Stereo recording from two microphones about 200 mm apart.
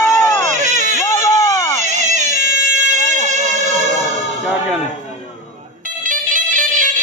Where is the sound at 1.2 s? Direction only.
15° left (ahead or behind).